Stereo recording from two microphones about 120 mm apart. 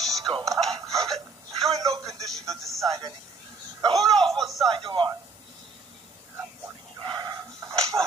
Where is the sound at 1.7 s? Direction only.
30° right (ahead or behind).